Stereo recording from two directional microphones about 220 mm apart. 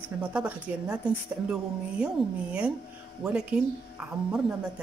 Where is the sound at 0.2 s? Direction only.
5° right (ahead or behind).